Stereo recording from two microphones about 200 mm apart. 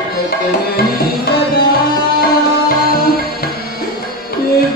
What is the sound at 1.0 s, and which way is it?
Tabla, 50° left (ahead or behind).